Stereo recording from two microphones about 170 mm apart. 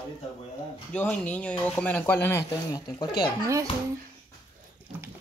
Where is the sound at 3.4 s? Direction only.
20° right (ahead or behind).